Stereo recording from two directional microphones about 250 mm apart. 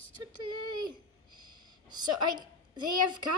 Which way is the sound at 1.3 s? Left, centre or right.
Right.